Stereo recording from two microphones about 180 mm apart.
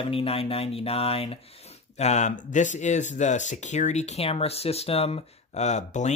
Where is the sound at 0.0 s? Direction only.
30° left (ahead or behind).